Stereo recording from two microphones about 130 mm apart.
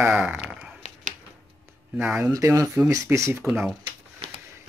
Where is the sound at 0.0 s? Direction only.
10° right (ahead or behind).